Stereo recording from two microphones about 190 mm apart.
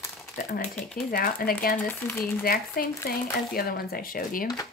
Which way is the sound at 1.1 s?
50° left (ahead or behind).